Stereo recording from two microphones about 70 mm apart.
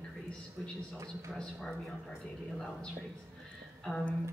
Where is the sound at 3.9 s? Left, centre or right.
Centre.